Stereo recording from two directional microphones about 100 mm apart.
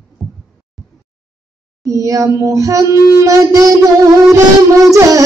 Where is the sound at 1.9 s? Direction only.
35° right (ahead or behind).